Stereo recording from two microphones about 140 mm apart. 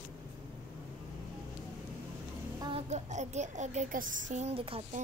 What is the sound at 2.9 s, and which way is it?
A child's voice, 55° right (ahead or behind).